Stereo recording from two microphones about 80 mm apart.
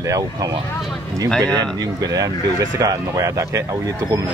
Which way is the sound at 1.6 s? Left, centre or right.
Right.